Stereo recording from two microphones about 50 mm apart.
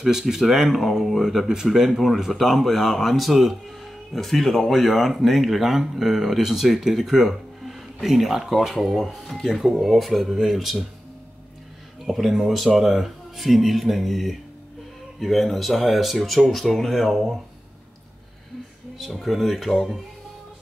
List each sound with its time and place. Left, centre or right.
0.0 s speech: centre
9.5 s speech: centre
9.8 s speech: centre
12.1 s speech: centre
18.9 s speech: centre